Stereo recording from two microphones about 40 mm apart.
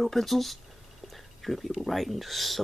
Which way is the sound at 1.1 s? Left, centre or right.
Centre.